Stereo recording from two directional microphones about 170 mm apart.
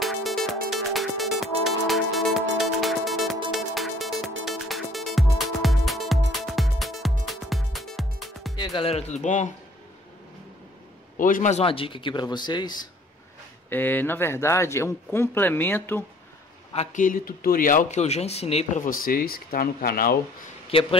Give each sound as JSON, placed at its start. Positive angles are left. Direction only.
{"t": 0.0, "sound": "music", "side_deg": 0}
{"t": 8.5, "sound": "speech", "side_deg": 25}
{"t": 11.1, "sound": "speech", "side_deg": 50}
{"t": 13.7, "sound": "a man's voice", "side_deg": 10}
{"t": 16.7, "sound": "speech", "side_deg": 45}
{"t": 18.9, "sound": "speech", "side_deg": 55}
{"t": 20.7, "sound": "a man's voice", "side_deg": 30}